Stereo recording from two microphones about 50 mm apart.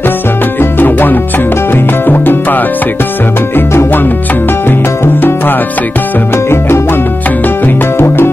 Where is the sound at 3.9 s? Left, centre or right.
Left.